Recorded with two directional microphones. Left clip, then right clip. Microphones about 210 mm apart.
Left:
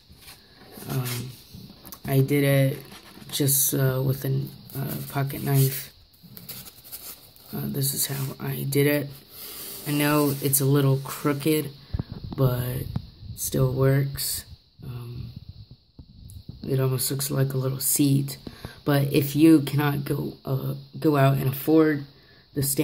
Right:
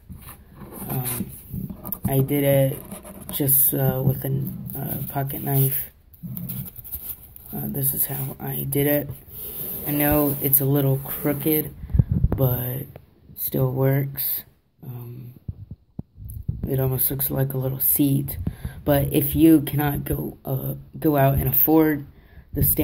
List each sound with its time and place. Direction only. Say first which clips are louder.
1.9 s speech: even; 30° left (ahead or behind)
7.5 s speech: left 1 dB; 30° left (ahead or behind)
16.6 s speech: even; 20° left (ahead or behind)